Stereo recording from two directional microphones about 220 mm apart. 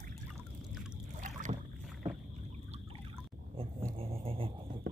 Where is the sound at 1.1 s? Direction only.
35° right (ahead or behind).